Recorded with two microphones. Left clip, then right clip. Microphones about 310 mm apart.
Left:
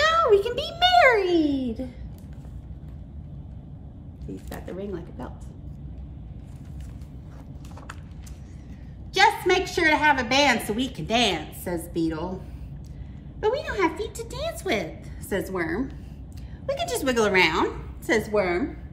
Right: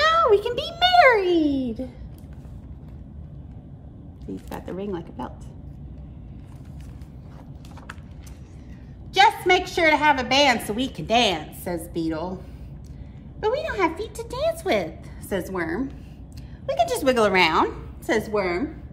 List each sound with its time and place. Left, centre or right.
0.0 s a sound: centre
1.4 s a child's voice: centre
4.5 s speech: right
9.1 s a woman's voice: centre
11.8 s a woman's voice: centre
13.7 s a woman's voice: centre
16.6 s a woman's voice: centre